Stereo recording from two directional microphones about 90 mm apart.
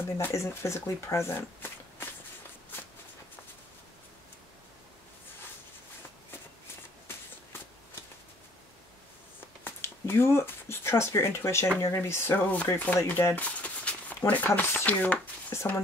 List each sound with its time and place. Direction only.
0.3 s speech: 35° left (ahead or behind)
9.7 s speech: 25° left (ahead or behind)
15.5 s speech: 30° left (ahead or behind)